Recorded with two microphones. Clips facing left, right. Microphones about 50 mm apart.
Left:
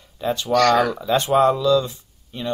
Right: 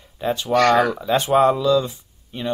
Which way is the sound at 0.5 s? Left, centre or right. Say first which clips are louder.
Right 1 dB; centre.